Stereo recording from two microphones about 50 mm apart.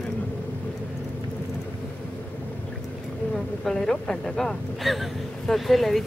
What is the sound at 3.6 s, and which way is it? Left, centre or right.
Speech, centre.